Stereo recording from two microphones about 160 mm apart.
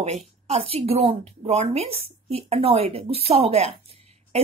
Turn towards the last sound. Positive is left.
turn(degrees=-40)  # may be behind; listen again after turning